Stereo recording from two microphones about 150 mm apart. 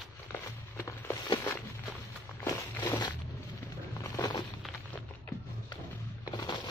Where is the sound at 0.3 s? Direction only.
20° left (ahead or behind).